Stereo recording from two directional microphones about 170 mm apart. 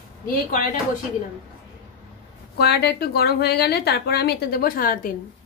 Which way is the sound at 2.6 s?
80° left.